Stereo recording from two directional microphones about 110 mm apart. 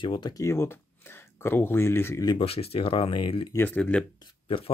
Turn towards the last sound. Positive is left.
turn(degrees=55)  # may be behind; listen again after turning